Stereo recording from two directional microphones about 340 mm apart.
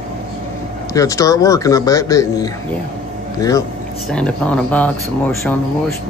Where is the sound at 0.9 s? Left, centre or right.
Centre.